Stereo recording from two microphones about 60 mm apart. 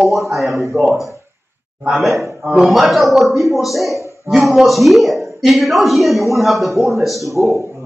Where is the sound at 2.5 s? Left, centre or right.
Centre.